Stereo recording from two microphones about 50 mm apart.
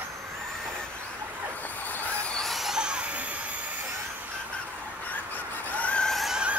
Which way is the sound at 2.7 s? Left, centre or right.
Centre.